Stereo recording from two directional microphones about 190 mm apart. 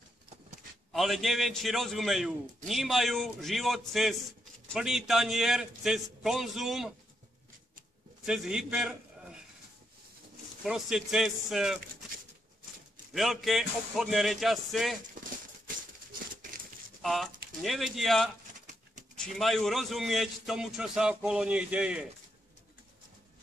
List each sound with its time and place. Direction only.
0.9 s a man's voice: centre (ahead or behind)
8.3 s a man's voice: 5° right (ahead or behind)
10.6 s a man's voice: 5° right (ahead or behind)
13.1 s a man's voice: centre (ahead or behind)
15.2 s a sound: 45° right (ahead or behind)
17.0 s a man's voice: centre (ahead or behind)